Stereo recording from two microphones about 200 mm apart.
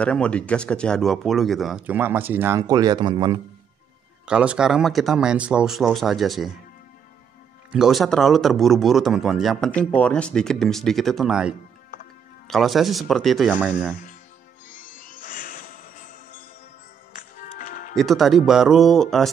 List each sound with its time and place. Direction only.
0.0 s speech: 5° left (ahead or behind); by 3.3 s 20° right (ahead or behind)
4.3 s speech: 5° right (ahead or behind)
7.7 s speech: centre (ahead or behind)
14.8 s music: 40° left (ahead or behind)
17.9 s speech: centre (ahead or behind)